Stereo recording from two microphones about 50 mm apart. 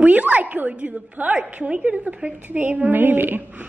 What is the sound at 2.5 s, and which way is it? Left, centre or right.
A woman's voice, right.